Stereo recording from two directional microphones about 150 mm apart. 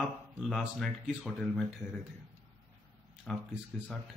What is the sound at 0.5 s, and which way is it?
Speech, centre (ahead or behind).